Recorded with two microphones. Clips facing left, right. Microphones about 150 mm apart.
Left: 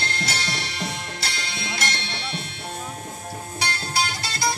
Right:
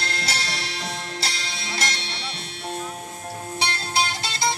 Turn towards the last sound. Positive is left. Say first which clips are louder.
# even
turn(degrees=-25)  # may be behind; listen again after turning